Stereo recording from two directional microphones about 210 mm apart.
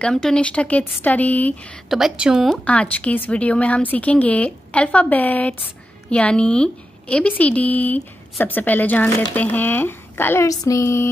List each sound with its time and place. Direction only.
0.0 s a woman's voice: 5° left (ahead or behind)